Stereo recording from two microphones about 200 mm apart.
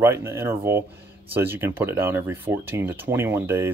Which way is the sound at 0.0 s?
10° right (ahead or behind).